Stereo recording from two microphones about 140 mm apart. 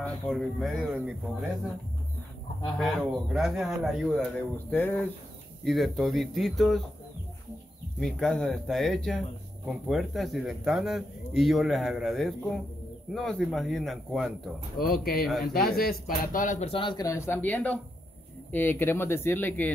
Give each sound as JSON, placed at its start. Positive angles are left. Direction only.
{"t": 0.0, "sound": "speech", "side_deg": 0}
{"t": 2.8, "sound": "speech", "side_deg": 0}
{"t": 8.0, "sound": "speech", "side_deg": 5}
{"t": 14.8, "sound": "speech", "side_deg": 90}
{"t": 15.2, "sound": "speech", "side_deg": 0}
{"t": 15.5, "sound": "a man's voice", "side_deg": 90}
{"t": 17.0, "sound": "speech", "side_deg": 20}